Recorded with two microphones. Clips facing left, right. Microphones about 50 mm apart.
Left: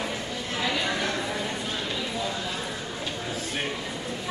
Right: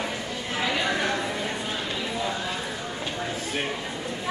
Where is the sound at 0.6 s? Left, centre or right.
Centre.